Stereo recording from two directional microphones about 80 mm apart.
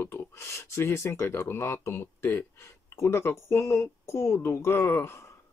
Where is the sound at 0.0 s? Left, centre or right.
Left.